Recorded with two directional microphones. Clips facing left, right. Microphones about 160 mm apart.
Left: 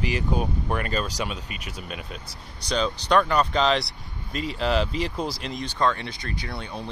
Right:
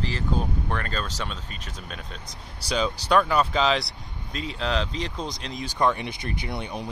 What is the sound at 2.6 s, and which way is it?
Speech, 5° right (ahead or behind).